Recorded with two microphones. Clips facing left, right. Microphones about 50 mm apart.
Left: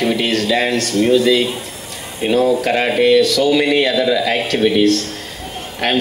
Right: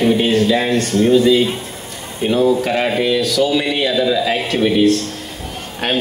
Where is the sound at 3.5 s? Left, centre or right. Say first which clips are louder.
Left 2 dB; left.